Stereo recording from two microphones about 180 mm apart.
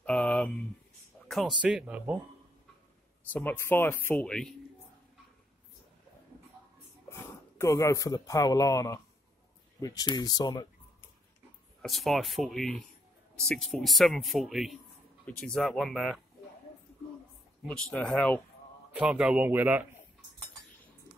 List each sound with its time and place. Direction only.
0.0 s a sound: 5° left (ahead or behind)
1.6 s speech: 5° right (ahead or behind)
3.3 s speech: 10° left (ahead or behind)
7.1 s speech: 15° left (ahead or behind)
11.8 s speech: centre (ahead or behind)
17.6 s speech: 10° left (ahead or behind)
18.9 s speech: 5° right (ahead or behind)